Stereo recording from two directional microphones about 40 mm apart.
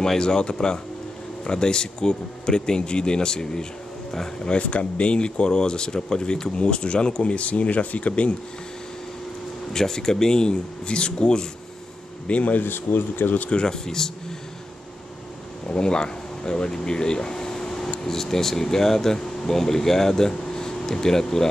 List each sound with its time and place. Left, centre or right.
0.0 s speech: centre
4.5 s speech: left
9.7 s speech: centre
12.3 s speech: left
12.6 s speech: left
13.5 s speech: centre
15.7 s speech: centre